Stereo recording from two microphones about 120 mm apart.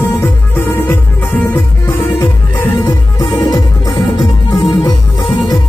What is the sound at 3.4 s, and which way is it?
Music, 30° left (ahead or behind).